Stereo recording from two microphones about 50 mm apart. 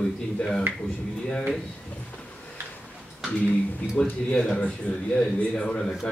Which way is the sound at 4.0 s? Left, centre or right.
Centre.